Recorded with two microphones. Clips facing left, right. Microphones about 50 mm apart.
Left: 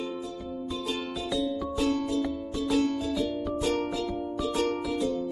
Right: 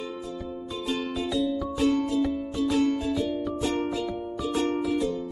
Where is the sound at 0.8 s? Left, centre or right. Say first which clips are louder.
Right 6 dB; centre.